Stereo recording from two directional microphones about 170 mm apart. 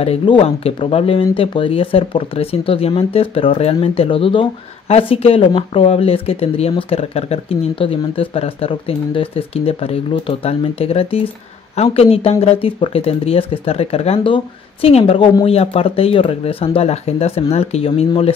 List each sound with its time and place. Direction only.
0.0 s speech: 35° left (ahead or behind)